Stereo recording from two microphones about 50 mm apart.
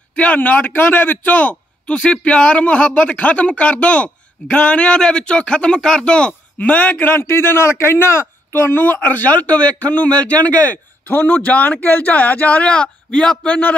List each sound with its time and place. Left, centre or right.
0.1 s a man's voice: left
6.6 s a man's voice: left
7.1 s a man's voice: left; by 13.5 s centre
13.5 s a man's voice: left